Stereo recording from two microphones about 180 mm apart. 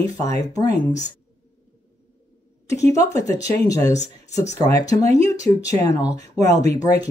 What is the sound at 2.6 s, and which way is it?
A woman's voice, 15° left (ahead or behind).